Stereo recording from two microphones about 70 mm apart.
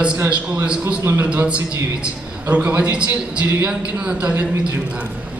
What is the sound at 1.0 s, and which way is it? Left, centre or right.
Speech, right.